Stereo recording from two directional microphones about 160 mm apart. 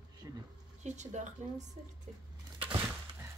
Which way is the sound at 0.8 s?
45° right (ahead or behind).